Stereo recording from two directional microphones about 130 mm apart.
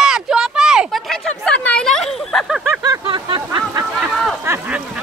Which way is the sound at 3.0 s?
40° right (ahead or behind).